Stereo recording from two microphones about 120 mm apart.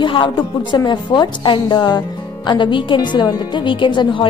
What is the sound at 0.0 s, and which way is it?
A woman's voice, 45° left (ahead or behind).